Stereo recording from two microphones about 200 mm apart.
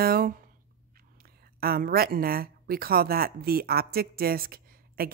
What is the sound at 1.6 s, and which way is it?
A woman's voice, 50° right (ahead or behind).